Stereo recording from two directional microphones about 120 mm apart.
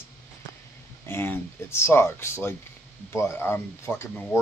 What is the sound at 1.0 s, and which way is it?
Speech, 20° left (ahead or behind).